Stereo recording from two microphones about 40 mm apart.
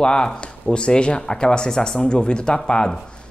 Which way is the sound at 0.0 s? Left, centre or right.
Left.